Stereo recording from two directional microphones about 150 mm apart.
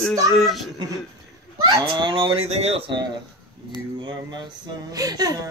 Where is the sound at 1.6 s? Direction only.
25° right (ahead or behind).